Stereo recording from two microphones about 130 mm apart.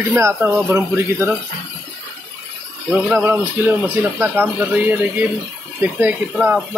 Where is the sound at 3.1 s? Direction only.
15° right (ahead or behind).